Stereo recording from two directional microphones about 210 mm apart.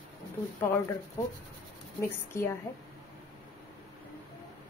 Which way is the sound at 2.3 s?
15° left (ahead or behind).